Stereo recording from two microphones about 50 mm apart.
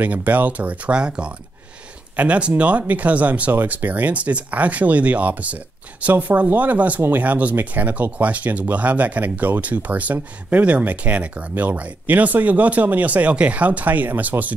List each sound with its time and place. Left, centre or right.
0.0 s speech: right